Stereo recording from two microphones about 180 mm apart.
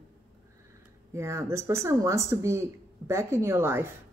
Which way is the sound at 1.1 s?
15° right (ahead or behind).